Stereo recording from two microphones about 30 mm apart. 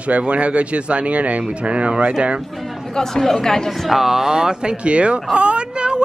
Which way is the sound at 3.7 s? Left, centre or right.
Centre.